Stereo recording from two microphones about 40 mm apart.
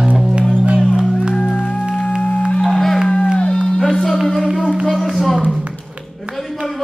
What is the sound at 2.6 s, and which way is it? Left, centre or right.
Music, centre.